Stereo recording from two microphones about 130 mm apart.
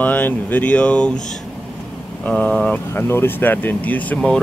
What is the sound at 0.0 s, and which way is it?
Speech, 15° left (ahead or behind).